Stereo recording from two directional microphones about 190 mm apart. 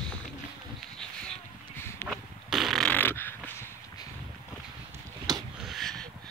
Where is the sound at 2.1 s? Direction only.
Centre (ahead or behind).